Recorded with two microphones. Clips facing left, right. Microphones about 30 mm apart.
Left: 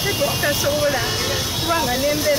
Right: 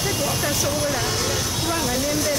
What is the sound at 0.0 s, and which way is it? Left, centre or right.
Speech, centre.